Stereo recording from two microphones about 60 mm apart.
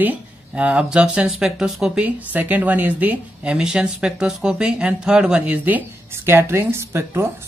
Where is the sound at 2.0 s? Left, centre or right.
Right.